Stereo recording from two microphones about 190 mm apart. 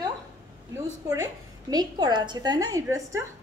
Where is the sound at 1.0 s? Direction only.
20° right (ahead or behind).